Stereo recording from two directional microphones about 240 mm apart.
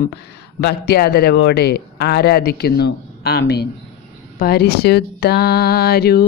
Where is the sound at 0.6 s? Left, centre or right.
Left.